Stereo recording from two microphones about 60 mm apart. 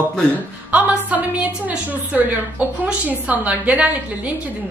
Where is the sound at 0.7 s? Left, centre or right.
Right.